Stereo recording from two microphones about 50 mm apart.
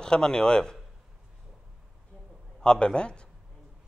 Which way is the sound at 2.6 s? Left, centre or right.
Centre.